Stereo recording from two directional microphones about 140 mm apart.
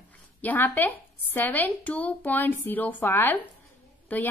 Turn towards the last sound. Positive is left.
turn(degrees=10)  # may be behind; listen again after turning